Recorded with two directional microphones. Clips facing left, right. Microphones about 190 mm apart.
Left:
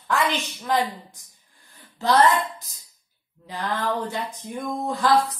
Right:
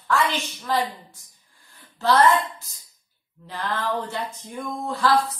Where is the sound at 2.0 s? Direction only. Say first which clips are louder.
Even; 15° left (ahead or behind).